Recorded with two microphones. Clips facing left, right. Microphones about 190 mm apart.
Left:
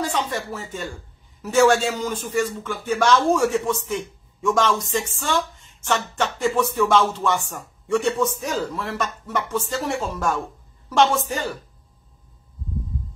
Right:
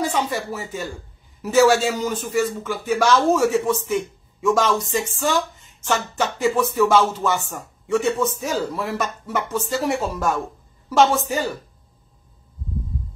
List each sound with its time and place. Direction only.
0.0 s speech: 10° right (ahead or behind)